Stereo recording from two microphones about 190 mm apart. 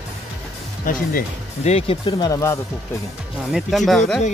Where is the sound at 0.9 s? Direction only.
45° left (ahead or behind).